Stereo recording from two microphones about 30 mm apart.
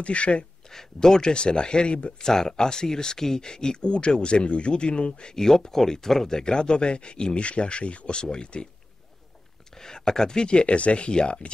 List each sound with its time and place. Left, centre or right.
0.0 s speech: left
0.7 s speech: centre
1.3 s speech: left
2.2 s speech: centre; by 5.3 s left
5.3 s speech: centre
6.4 s speech: left
8.2 s speech: left
9.8 s speech: centre; by 11.5 s left